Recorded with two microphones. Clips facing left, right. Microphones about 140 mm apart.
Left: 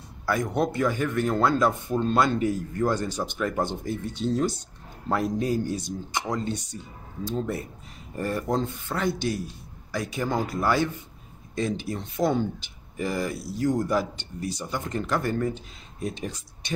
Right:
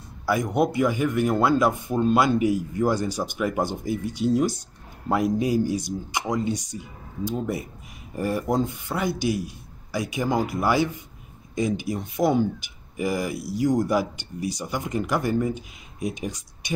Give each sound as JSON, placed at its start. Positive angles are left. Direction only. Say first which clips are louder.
{"t": 0.3, "sound": "speech", "louder": "right 3 dB", "side_deg": -10}